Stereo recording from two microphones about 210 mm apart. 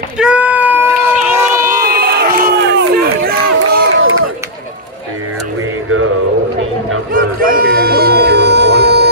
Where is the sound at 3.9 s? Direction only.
75° right (ahead or behind).